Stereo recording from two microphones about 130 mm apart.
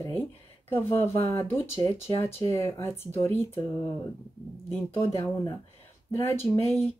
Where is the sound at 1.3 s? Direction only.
20° left (ahead or behind).